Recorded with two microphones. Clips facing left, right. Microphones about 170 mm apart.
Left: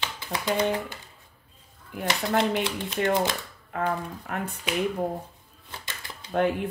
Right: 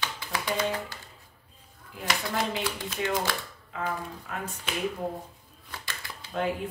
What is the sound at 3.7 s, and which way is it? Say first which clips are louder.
Speech: left 5 dB; 55° left (ahead or behind).